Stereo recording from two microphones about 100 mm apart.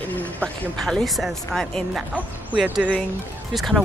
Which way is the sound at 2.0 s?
10° right (ahead or behind).